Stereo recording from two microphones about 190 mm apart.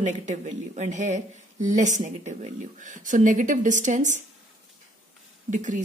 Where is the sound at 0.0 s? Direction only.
40° right (ahead or behind).